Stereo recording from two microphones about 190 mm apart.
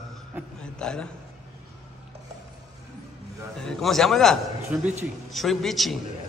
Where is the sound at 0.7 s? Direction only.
5° left (ahead or behind).